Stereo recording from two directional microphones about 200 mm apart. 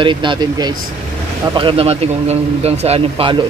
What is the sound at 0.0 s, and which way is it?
A man's voice, 25° right (ahead or behind).